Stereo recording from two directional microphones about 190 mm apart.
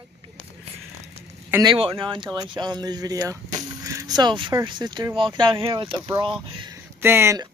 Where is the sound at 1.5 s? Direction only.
20° right (ahead or behind).